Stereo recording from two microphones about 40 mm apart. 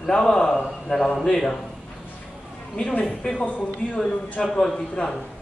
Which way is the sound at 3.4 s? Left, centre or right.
Left.